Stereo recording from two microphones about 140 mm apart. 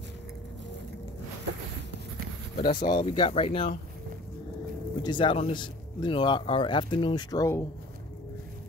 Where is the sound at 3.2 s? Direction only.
45° left (ahead or behind).